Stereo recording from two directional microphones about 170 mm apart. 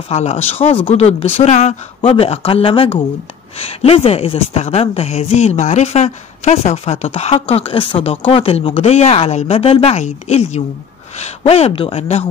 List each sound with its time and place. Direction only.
0.1 s speech: 40° left (ahead or behind)